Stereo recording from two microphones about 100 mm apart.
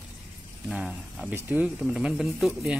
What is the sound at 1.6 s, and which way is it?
Speech, 5° right (ahead or behind).